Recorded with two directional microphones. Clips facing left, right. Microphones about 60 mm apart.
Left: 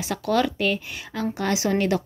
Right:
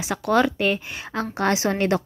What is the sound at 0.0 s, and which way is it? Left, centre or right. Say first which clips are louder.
A woman's voice: right 3 dB; right.